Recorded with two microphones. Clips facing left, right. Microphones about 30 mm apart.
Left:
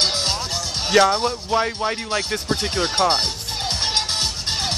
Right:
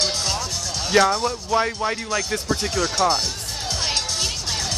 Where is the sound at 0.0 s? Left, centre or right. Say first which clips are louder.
Left 2 dB; left.